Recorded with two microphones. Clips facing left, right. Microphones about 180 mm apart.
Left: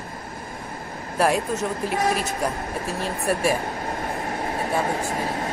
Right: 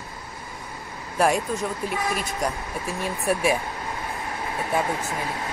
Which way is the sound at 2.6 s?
55° left (ahead or behind).